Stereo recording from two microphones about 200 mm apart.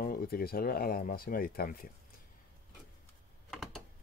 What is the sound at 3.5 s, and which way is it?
Typing, centre (ahead or behind).